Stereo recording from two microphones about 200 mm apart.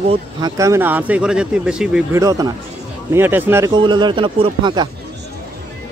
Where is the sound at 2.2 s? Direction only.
15° right (ahead or behind).